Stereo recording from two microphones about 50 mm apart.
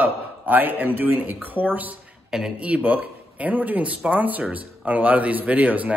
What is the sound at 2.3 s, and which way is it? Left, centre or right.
Speech, centre.